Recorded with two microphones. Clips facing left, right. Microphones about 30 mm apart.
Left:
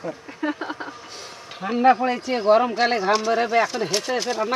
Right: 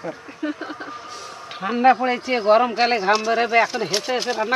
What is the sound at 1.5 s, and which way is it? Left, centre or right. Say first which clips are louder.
Speech: right 1 dB; centre.